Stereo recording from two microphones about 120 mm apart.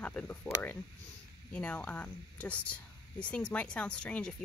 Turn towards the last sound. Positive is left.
turn(degrees=10)  # may be behind; listen again after turning